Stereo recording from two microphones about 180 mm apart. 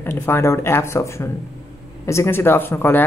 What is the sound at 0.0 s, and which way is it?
Speech, 10° left (ahead or behind).